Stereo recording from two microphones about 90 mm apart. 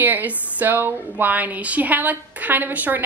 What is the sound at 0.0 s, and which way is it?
Speech, 20° right (ahead or behind).